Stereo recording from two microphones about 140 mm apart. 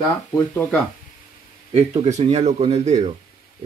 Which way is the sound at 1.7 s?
50° right (ahead or behind).